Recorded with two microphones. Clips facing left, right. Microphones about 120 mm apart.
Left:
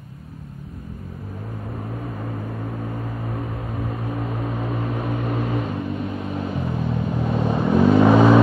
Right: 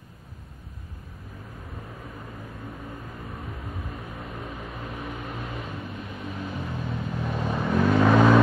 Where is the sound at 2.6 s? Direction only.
65° left (ahead or behind).